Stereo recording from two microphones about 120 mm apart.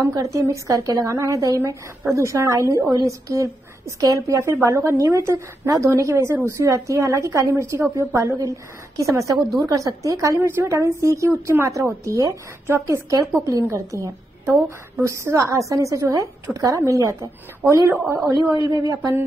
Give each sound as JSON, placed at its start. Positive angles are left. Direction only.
{"t": 0.0, "sound": "a woman's voice", "side_deg": -25}
{"t": 18.4, "sound": "speech", "side_deg": -30}